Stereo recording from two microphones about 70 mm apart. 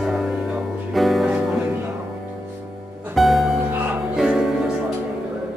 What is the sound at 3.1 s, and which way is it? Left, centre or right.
Music, centre.